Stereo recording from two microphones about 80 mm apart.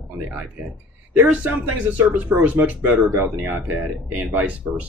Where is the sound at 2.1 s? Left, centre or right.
Centre.